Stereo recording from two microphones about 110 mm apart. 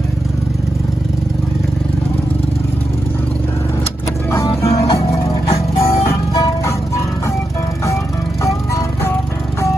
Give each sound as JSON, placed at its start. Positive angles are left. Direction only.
{"t": 4.6, "sound": "music", "side_deg": 25}